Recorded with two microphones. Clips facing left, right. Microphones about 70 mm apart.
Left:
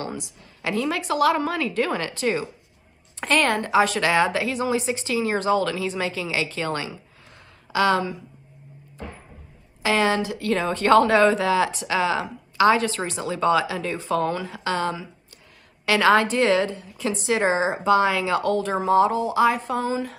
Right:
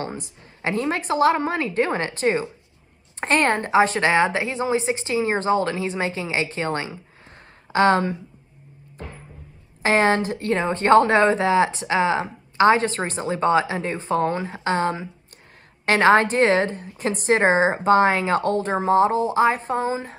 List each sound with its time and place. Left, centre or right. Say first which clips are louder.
0.0 s a woman's voice: right 1 dB; right
9.8 s speech: right 3 dB; right